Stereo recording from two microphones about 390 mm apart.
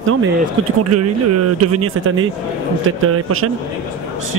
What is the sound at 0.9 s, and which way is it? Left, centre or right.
Speech, right.